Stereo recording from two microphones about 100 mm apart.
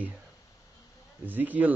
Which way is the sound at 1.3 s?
15° right (ahead or behind).